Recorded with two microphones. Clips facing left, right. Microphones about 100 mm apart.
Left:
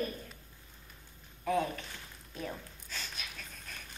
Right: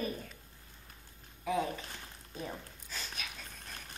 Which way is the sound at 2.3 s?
15° right (ahead or behind).